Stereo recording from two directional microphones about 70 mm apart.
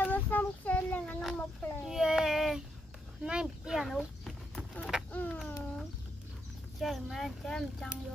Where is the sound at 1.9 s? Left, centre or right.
Centre.